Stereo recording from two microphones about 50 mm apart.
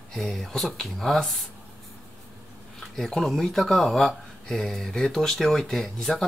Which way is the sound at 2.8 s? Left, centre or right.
Centre.